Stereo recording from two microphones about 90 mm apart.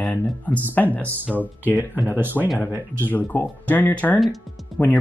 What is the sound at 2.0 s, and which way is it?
Speech, 20° right (ahead or behind).